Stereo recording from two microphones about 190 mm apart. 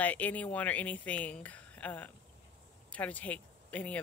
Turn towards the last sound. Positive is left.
turn(degrees=5)  # may be behind; listen again after turning